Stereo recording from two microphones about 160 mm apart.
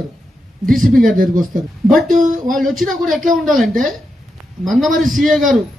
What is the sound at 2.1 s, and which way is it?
Speech, 55° right (ahead or behind).